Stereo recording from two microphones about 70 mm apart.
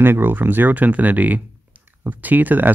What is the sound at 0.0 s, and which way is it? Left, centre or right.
Speech, right.